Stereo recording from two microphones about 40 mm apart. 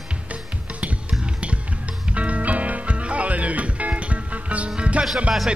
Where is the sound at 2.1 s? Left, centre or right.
Right.